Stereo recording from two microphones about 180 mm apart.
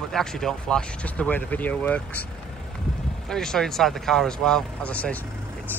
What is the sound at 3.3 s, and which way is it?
Speech, 5° left (ahead or behind).